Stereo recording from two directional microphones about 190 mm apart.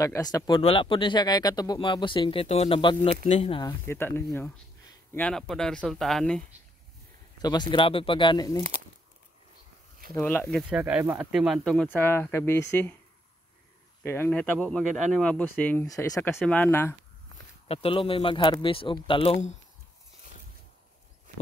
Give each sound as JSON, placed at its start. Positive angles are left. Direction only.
{"t": 0.0, "sound": "speech", "side_deg": 20}
{"t": 3.3, "sound": "speech", "side_deg": 35}
{"t": 3.8, "sound": "speech", "side_deg": 10}
{"t": 7.4, "sound": "speech", "side_deg": 25}
{"t": 10.1, "sound": "speech", "side_deg": 10}
{"t": 14.0, "sound": "speech", "side_deg": 10}
{"t": 17.6, "sound": "speech", "side_deg": 30}